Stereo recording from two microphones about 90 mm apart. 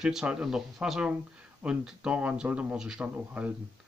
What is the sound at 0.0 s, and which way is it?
A man's voice, 10° right (ahead or behind).